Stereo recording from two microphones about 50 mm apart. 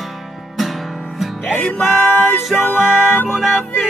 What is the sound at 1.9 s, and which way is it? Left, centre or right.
Music, left.